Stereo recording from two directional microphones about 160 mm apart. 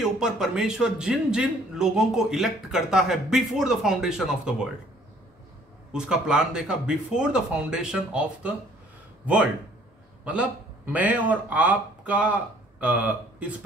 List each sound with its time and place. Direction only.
0.0 s a man's voice: 5° right (ahead or behind)
5.9 s a man's voice: 5° right (ahead or behind)